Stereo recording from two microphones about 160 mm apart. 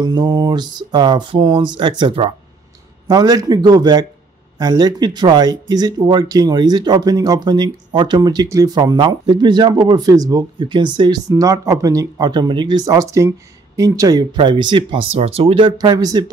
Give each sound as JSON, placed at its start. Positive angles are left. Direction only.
{"t": 0.0, "sound": "speech", "side_deg": -25}